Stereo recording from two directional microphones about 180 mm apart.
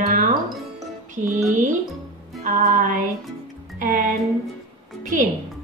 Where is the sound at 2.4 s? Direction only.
50° right (ahead or behind).